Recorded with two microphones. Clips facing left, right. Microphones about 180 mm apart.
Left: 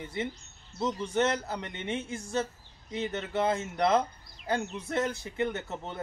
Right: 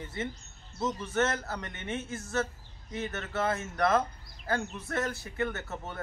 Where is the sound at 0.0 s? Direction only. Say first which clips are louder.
Left 2 dB; 15° left (ahead or behind).